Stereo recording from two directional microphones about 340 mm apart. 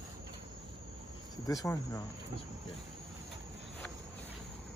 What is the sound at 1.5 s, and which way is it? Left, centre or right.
Speech, centre.